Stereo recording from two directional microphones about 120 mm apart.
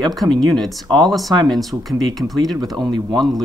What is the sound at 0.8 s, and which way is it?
Speech, 35° right (ahead or behind).